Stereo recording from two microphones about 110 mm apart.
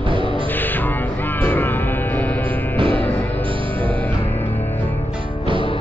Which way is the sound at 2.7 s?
50° right (ahead or behind).